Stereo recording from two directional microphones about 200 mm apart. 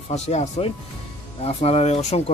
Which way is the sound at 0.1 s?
35° left (ahead or behind).